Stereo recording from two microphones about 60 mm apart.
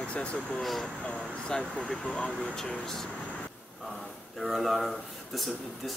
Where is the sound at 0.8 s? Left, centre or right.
Centre.